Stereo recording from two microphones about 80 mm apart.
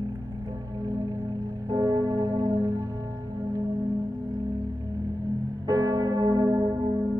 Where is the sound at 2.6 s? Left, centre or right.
Right.